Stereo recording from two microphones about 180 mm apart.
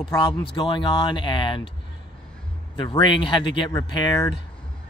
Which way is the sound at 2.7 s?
25° left (ahead or behind).